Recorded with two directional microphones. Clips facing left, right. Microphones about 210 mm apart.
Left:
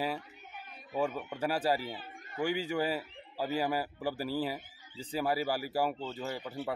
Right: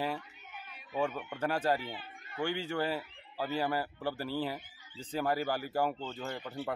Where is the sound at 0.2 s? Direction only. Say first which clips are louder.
Left 1 dB; 40° left (ahead or behind).